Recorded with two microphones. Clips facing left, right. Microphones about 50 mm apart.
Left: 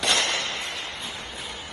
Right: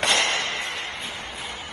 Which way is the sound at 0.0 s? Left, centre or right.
Right.